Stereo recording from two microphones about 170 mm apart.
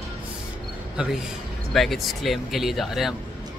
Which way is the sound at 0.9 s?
5° right (ahead or behind).